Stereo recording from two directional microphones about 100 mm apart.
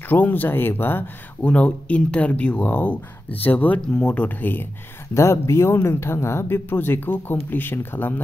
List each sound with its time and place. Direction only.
0.1 s speech: 20° left (ahead or behind)